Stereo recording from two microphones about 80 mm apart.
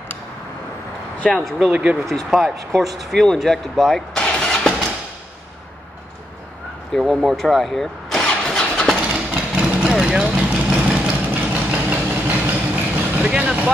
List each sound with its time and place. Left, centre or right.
1.3 s speech: centre
1.7 s speech: centre
2.0 s speech: centre
6.9 s vehicle: centre
8.9 s vehicle: centre